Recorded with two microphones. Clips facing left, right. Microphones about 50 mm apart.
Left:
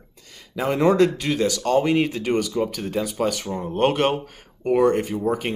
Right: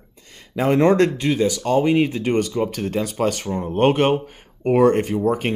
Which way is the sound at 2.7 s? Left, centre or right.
Right.